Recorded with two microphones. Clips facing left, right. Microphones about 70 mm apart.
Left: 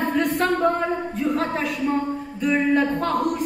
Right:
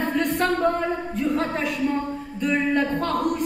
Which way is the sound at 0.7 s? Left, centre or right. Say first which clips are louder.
Left 1 dB; centre.